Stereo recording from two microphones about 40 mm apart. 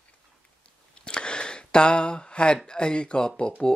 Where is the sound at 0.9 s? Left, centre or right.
Left.